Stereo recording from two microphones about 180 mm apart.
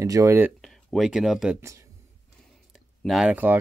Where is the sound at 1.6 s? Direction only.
15° right (ahead or behind).